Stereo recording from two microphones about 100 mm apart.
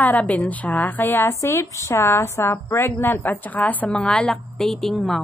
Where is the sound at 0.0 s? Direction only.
15° left (ahead or behind).